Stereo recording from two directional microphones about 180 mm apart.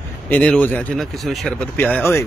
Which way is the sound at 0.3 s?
10° left (ahead or behind).